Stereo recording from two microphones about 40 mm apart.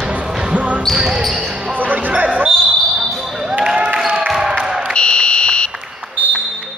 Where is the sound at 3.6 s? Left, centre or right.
Centre.